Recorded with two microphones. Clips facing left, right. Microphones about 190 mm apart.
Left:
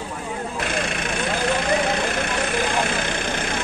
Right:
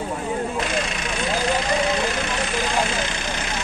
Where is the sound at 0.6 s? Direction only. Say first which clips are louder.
Even; 55° left (ahead or behind).